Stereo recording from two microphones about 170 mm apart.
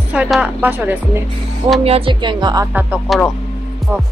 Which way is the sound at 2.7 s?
Centre (ahead or behind).